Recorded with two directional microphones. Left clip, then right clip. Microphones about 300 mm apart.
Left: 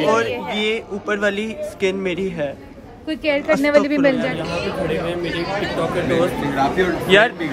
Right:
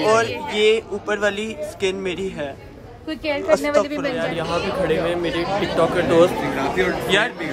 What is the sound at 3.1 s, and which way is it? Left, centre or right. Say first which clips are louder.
Speech: left 4 dB; left.